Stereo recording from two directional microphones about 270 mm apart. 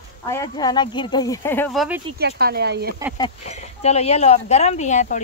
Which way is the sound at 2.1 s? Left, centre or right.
Right.